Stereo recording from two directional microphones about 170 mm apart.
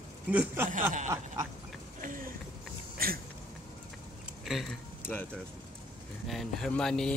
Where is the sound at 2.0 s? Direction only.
50° right (ahead or behind).